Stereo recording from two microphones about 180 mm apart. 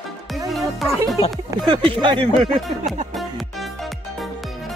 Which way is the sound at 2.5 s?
Centre (ahead or behind).